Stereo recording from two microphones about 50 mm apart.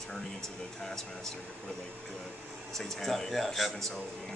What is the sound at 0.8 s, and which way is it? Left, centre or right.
Speech, centre.